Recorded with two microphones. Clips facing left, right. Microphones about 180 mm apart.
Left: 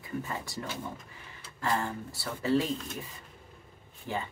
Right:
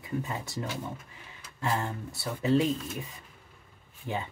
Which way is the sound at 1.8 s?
20° right (ahead or behind).